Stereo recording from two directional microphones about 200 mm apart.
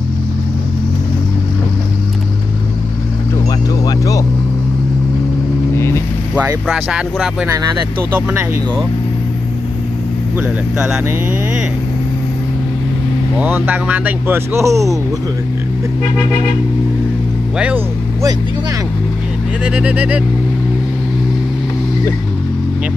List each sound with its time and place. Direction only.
3.8 s vehicle: 15° left (ahead or behind)
5.8 s vehicle: 15° left (ahead or behind)
6.3 s speech: 5° right (ahead or behind)
13.4 s speech: 10° right (ahead or behind)
17.6 s speech: 5° right (ahead or behind)
19.6 s speech: 5° right (ahead or behind)